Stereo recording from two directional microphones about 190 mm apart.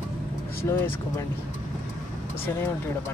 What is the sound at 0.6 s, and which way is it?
Speech, 15° left (ahead or behind).